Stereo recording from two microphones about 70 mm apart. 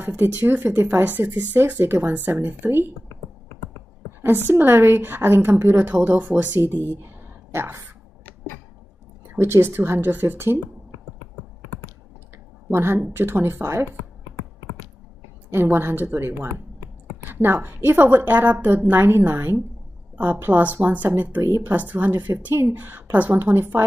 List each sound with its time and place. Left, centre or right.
0.0 s a woman's voice: right
4.2 s a woman's voice: right
9.3 s a woman's voice: right
12.7 s a woman's voice: right
15.5 s a woman's voice: right